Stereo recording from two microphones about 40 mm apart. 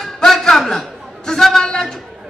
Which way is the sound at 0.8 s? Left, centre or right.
Centre.